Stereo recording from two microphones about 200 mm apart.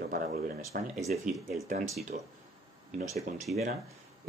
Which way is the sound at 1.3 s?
Centre (ahead or behind).